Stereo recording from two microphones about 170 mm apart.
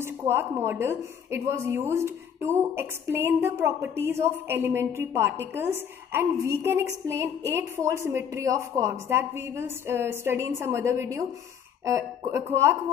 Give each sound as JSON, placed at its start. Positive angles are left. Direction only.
{"t": 0.0, "sound": "a woman's voice", "side_deg": -15}